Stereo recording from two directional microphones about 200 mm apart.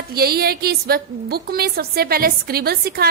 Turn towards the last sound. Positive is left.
turn(degrees=-50)  # may be behind; listen again after turning